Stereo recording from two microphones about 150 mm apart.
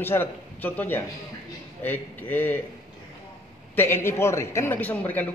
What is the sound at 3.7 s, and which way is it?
A man's voice, 15° left (ahead or behind).